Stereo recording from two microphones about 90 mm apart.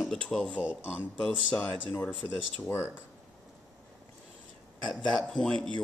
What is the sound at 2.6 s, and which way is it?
Speech, 30° left (ahead or behind).